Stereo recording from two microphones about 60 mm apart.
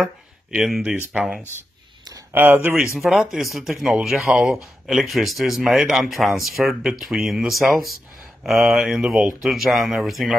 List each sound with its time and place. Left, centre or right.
0.7 s speech: centre
1.1 s speech: centre
2.3 s speech: right
3.0 s speech: centre